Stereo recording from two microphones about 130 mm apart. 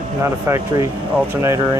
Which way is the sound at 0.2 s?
20° right (ahead or behind).